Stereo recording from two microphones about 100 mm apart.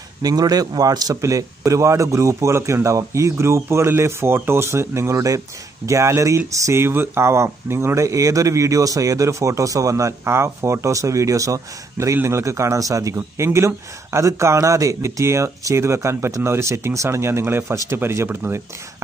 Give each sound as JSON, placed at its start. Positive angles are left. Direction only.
{"t": 0.2, "sound": "a man's voice", "side_deg": -40}